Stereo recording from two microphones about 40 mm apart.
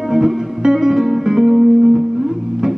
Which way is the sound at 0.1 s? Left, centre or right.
Centre.